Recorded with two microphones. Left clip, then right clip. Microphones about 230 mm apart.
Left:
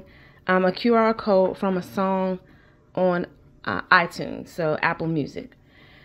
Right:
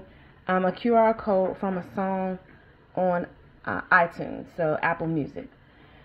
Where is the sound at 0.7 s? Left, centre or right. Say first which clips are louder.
Right 2 dB; left.